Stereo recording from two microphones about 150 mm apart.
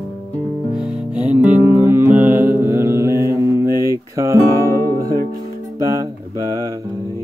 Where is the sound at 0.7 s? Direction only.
10° right (ahead or behind).